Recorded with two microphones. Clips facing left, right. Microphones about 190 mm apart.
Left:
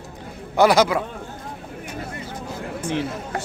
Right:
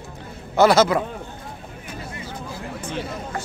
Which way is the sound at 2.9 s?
75° left (ahead or behind).